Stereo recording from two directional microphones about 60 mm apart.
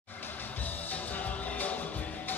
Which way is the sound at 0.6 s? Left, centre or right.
Left.